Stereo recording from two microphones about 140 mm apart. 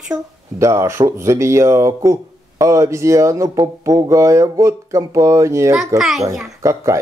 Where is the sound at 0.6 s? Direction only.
20° right (ahead or behind).